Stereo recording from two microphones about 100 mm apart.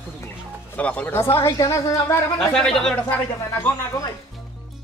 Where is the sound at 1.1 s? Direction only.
25° left (ahead or behind).